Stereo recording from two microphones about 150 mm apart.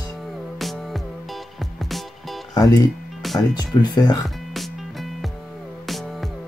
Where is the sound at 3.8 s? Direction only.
25° left (ahead or behind).